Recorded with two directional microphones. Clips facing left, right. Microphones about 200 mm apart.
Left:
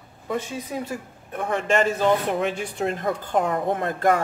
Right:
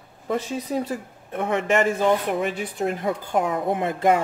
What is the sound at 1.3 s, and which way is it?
Speech, 20° right (ahead or behind).